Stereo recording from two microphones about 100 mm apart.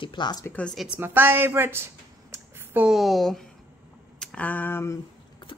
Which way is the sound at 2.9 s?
Centre (ahead or behind).